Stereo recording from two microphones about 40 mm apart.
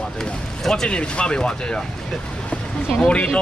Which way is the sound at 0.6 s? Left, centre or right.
Centre.